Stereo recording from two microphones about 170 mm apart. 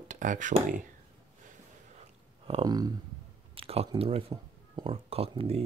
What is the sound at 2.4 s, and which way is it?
Speech, 30° right (ahead or behind).